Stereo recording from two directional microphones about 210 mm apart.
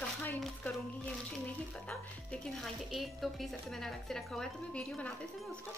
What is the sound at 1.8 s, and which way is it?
A woman's voice, 5° left (ahead or behind).